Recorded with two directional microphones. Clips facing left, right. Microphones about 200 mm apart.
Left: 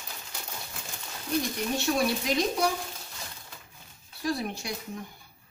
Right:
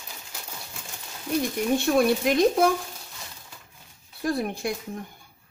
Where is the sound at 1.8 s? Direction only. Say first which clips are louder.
Right 6 dB; 55° right (ahead or behind).